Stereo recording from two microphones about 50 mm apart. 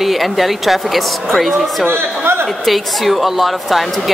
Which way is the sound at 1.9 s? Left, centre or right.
Right.